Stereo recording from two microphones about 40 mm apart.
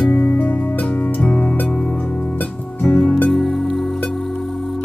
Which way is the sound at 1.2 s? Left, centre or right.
Left.